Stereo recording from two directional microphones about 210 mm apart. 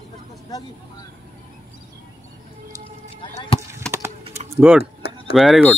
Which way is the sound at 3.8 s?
5° left (ahead or behind).